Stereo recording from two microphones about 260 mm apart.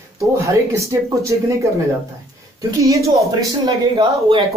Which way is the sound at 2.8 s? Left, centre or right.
Centre.